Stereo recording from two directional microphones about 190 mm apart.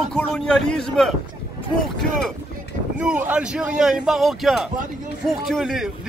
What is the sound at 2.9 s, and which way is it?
A man's voice, 5° right (ahead or behind).